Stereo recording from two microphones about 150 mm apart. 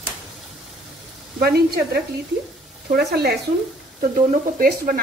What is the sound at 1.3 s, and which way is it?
Speech, 90° right.